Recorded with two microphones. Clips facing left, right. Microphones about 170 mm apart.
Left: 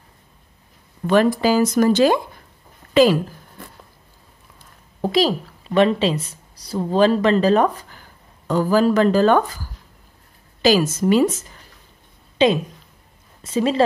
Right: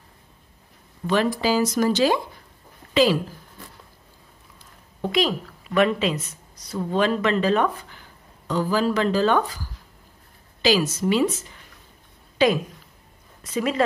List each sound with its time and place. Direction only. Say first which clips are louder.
1.0 s speech: left 5 dB; 50° left (ahead or behind)
2.9 s a sound: left 5 dB; 50° left (ahead or behind)
5.0 s a woman's voice: left 4 dB; 35° left (ahead or behind)
10.6 s speech: left 4 dB; 50° left (ahead or behind)
12.4 s a woman's voice: left 3 dB; 20° left (ahead or behind)